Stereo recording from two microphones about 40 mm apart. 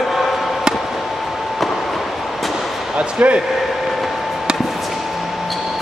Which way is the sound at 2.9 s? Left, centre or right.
Right.